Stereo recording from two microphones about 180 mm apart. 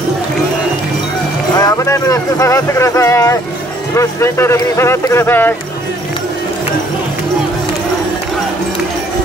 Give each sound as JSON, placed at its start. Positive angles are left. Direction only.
{"t": 1.6, "sound": "speech", "side_deg": 20}